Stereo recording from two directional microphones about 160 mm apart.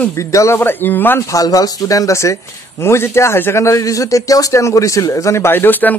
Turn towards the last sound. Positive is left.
turn(degrees=10)  # may be behind; listen again after turning